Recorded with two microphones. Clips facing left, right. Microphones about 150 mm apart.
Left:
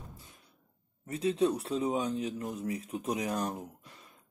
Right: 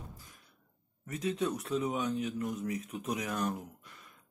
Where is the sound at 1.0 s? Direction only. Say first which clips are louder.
Left 5 dB; 30° left (ahead or behind).